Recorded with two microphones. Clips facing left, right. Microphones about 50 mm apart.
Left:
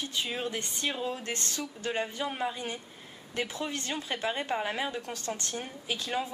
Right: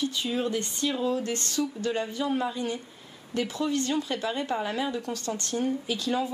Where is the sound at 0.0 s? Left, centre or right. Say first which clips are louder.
Right 5 dB; left.